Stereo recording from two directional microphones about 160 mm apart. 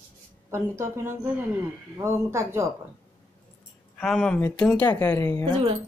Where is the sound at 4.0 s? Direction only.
5° left (ahead or behind).